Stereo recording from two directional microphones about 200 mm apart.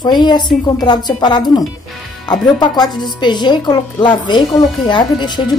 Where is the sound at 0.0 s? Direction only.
20° left (ahead or behind).